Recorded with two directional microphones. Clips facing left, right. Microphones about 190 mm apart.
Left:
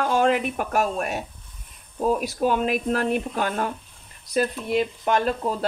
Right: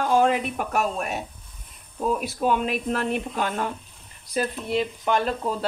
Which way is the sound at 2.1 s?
40° left (ahead or behind).